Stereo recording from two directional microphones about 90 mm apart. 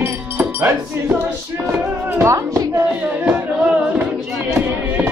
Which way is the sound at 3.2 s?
15° right (ahead or behind).